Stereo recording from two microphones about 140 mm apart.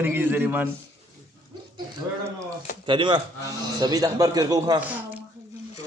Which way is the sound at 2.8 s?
35° right (ahead or behind).